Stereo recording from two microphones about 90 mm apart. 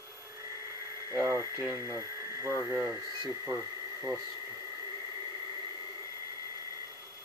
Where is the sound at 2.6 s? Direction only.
25° right (ahead or behind).